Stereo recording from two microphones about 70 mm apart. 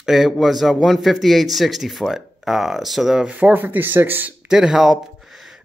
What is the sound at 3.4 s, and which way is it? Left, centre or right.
Speech, right.